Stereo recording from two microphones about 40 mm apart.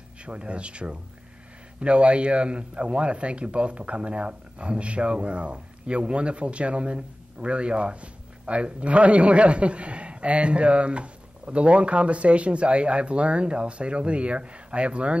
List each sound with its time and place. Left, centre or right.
0.2 s speech: right